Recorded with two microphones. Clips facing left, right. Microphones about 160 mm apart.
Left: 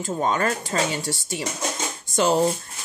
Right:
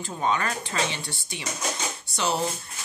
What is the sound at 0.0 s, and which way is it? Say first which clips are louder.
Speech: left 4 dB; 45° left (ahead or behind).